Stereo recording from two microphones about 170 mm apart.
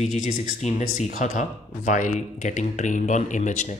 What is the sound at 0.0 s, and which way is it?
Speech, 45° left (ahead or behind).